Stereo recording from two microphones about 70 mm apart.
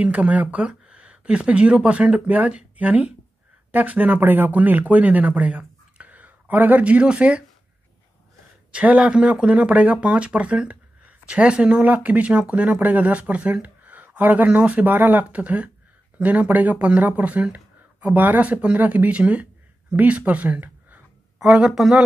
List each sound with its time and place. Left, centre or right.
0.0 s speech: centre
8.7 s speech: centre
21.4 s speech: centre